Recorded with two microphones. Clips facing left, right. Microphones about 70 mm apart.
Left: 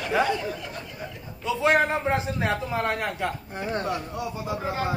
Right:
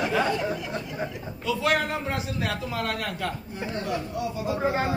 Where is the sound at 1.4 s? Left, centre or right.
Left.